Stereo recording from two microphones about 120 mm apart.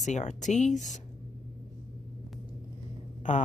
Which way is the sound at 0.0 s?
85° left.